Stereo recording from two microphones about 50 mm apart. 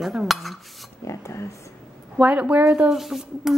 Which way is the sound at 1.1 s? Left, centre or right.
Left.